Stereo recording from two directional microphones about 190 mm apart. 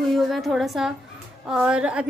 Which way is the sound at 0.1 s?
Centre (ahead or behind).